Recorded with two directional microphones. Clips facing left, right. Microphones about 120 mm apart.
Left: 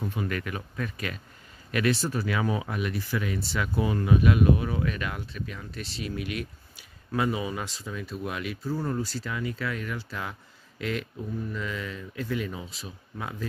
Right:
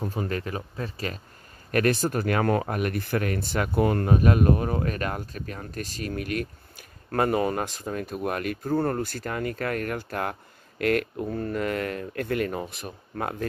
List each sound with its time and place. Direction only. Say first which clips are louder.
0.0 s speech: right 2 dB; 35° right (ahead or behind)
1.7 s speech: right 3 dB; 50° right (ahead or behind)